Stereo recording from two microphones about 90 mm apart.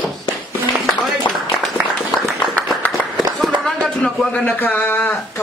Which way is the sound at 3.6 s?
5° left (ahead or behind).